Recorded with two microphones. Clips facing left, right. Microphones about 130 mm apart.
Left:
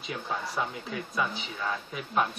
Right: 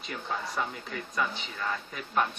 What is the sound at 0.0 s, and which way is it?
Speech, 5° left (ahead or behind).